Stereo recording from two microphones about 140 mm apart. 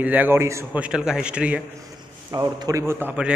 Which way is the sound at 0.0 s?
10° right (ahead or behind).